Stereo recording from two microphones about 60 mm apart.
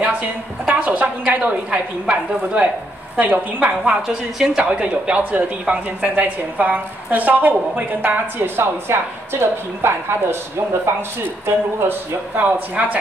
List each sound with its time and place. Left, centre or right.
0.0 s a woman's voice: right
4.4 s a woman's voice: centre